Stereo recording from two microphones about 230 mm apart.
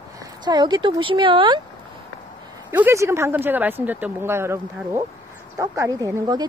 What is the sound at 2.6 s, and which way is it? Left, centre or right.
Speech, centre.